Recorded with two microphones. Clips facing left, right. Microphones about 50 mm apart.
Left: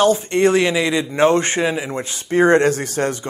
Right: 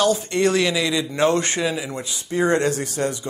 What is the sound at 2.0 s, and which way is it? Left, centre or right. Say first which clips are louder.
Speech: left 6 dB; left.